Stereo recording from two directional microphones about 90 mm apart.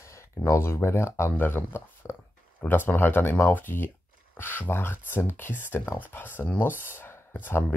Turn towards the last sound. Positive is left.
turn(degrees=20)  # may be behind; listen again after turning